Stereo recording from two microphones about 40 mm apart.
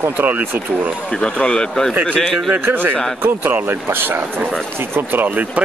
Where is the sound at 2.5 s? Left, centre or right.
Right.